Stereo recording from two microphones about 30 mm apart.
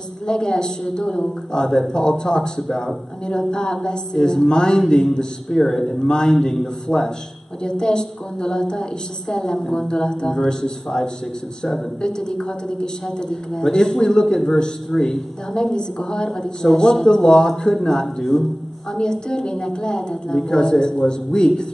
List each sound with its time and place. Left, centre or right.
0.3 s a man's voice: left
5.0 s a man's voice: centre
6.0 s a man's voice: left
6.9 s a man's voice: centre
7.6 s a man's voice: left
18.0 s a man's voice: centre
18.9 s a man's voice: left